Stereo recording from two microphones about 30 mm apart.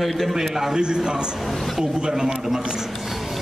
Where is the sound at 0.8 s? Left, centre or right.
Right.